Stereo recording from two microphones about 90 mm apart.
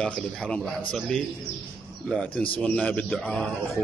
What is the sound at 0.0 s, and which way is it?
A man's voice, 10° left (ahead or behind).